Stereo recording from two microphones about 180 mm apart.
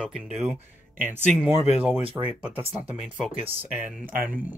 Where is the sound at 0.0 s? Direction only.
5° right (ahead or behind).